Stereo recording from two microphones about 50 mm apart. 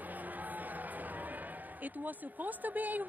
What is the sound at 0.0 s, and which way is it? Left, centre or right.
Speech, right.